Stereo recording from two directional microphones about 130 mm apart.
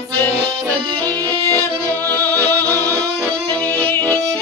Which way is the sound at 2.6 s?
25° right (ahead or behind).